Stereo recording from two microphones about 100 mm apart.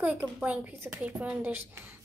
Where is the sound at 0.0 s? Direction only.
15° right (ahead or behind).